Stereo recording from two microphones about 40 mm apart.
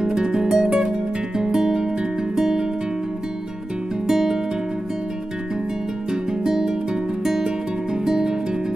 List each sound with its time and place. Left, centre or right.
0.0 s music: centre
4.1 s music: centre
6.4 s music: centre